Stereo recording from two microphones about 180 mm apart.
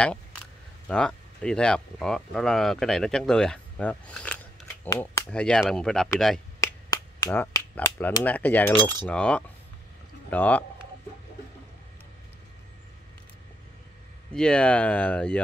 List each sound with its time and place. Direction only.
0.8 s speech: 5° left (ahead or behind)
6.6 s a sound: 20° left (ahead or behind)
7.7 s cutlery: 15° left (ahead or behind)
9.0 s speech: 5° left (ahead or behind)
10.3 s cutlery: 10° left (ahead or behind)
14.3 s cutlery: 5° left (ahead or behind)